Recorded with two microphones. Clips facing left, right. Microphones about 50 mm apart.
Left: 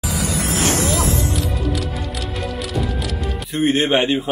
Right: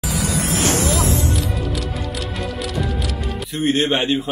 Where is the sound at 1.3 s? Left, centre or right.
Centre.